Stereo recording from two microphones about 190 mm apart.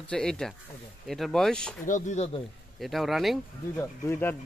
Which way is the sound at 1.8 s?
40° left (ahead or behind).